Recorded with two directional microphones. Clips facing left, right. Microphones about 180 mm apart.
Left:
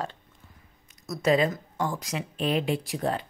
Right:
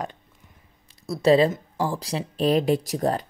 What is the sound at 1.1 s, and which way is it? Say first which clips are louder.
Speech: right 5 dB; 30° right (ahead or behind).